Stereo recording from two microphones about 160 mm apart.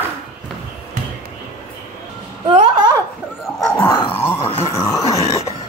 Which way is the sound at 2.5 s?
35° right (ahead or behind).